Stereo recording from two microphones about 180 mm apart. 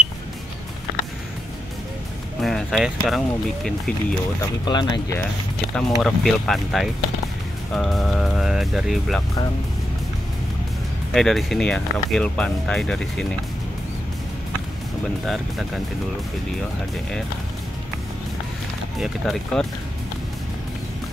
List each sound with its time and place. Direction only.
2.4 s speech: centre (ahead or behind)
4.6 s speech: 25° left (ahead or behind)
5.8 s speech: centre (ahead or behind)
11.1 s speech: centre (ahead or behind)
15.2 s speech: centre (ahead or behind)
18.9 s speech: centre (ahead or behind)